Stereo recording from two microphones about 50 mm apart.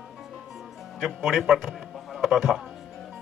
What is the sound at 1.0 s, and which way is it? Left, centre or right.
Music, centre.